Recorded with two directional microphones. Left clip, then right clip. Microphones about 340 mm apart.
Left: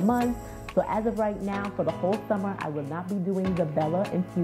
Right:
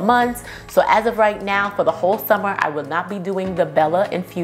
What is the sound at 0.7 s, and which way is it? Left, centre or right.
A woman's voice, centre.